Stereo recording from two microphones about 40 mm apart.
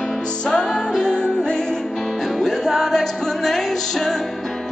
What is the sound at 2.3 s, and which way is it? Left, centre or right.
Music, centre.